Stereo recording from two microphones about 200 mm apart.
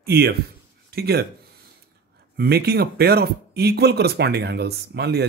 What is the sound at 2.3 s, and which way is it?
Speech, 50° right (ahead or behind).